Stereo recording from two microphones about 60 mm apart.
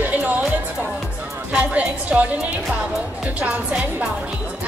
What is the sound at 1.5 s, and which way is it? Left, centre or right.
A woman's voice, centre.